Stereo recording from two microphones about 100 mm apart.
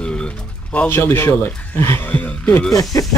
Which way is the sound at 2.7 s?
35° left (ahead or behind).